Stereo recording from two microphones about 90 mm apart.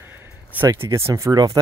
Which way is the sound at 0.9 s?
35° right (ahead or behind).